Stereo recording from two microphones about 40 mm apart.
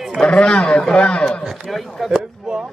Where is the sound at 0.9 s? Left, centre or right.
Left.